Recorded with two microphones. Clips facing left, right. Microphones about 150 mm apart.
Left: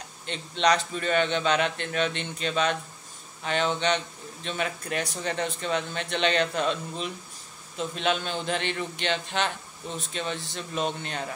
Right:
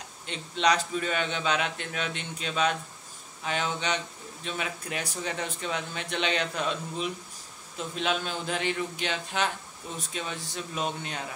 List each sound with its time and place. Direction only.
0.3 s speech: 10° right (ahead or behind)